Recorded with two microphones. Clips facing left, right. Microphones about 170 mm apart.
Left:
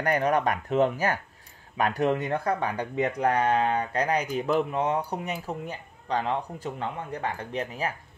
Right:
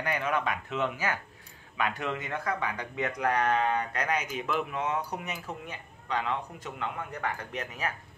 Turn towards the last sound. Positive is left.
turn(degrees=30)  # may be behind; listen again after turning